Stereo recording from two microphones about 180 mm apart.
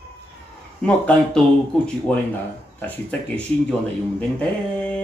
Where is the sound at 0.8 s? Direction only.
5° left (ahead or behind).